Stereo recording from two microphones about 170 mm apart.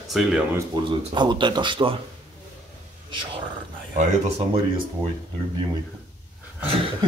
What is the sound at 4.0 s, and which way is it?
Speech, 45° right (ahead or behind).